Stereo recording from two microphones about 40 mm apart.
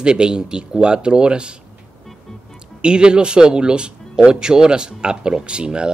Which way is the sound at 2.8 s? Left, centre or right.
Right.